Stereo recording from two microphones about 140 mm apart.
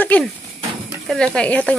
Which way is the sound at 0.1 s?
10° left (ahead or behind).